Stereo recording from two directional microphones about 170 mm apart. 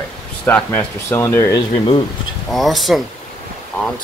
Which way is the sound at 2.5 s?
Centre (ahead or behind).